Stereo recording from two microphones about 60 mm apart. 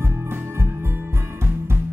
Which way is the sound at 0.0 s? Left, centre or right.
Right.